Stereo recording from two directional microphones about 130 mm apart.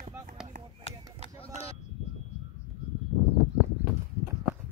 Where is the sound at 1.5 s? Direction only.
60° right (ahead or behind).